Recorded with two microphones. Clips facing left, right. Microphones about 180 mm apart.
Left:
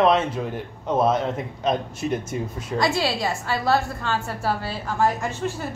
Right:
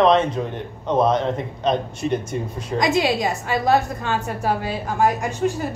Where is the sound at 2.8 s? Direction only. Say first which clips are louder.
Right 3 dB; 20° right (ahead or behind).